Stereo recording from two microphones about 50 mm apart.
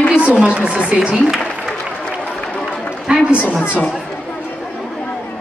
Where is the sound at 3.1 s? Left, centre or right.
Right.